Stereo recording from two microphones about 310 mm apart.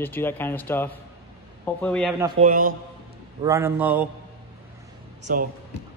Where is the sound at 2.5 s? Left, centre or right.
Right.